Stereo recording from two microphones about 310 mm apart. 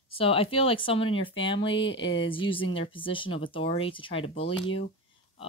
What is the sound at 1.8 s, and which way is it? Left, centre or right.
Speech, left.